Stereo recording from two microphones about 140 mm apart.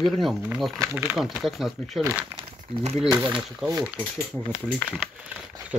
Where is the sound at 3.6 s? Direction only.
5° right (ahead or behind).